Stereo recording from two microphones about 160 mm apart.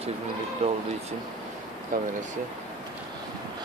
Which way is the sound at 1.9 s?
60° right (ahead or behind).